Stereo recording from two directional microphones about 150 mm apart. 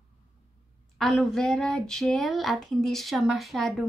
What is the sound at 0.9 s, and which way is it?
Speech, centre (ahead or behind).